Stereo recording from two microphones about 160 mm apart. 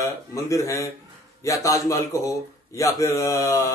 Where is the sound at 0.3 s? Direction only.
20° left (ahead or behind).